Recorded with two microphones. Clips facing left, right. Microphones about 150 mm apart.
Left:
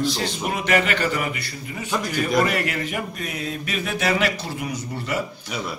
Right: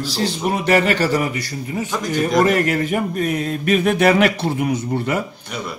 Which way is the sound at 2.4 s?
45° right (ahead or behind).